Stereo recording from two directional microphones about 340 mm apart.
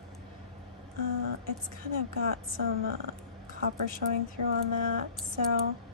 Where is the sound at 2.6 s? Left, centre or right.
Right.